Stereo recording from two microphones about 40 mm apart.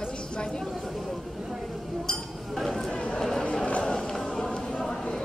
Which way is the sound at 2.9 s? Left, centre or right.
Left.